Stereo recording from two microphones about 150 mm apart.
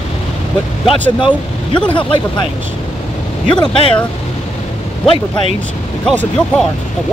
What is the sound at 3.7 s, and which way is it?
Speech, 35° left (ahead or behind).